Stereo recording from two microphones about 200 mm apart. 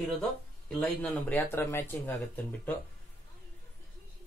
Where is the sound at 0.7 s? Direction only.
5° left (ahead or behind).